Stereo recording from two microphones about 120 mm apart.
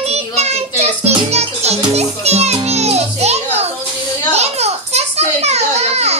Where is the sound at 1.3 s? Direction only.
60° right (ahead or behind).